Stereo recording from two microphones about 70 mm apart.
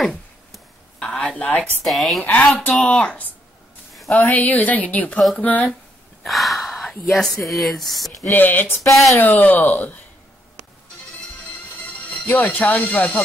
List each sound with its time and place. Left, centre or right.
0.9 s a sound: centre
1.9 s a woman's voice: centre
2.2 s speech: left
6.2 s speech: centre
8.3 s speech: left
11.8 s speech: left